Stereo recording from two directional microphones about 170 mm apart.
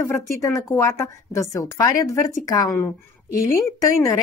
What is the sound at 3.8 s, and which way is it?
Speech, 20° left (ahead or behind).